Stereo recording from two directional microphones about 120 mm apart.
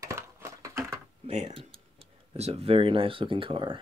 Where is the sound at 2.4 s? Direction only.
55° right (ahead or behind).